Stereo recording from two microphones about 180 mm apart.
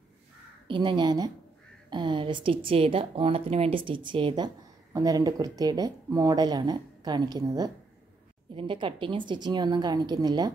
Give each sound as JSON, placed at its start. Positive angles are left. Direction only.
{"t": 0.7, "sound": "speech", "side_deg": -25}